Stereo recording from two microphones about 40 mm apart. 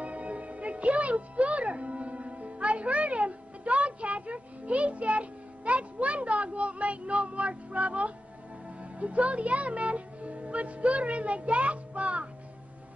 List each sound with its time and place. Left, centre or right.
0.0 s music: right
8.6 s speech: right